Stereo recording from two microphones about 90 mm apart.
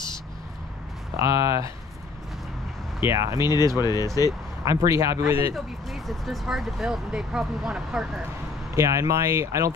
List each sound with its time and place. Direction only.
1.1 s speech: 40° right (ahead or behind)
3.0 s speech: 30° right (ahead or behind)
3.3 s speech: 50° left (ahead or behind)
4.6 s speech: 35° right (ahead or behind)
5.9 s speech: centre (ahead or behind)
8.7 s speech: 35° right (ahead or behind)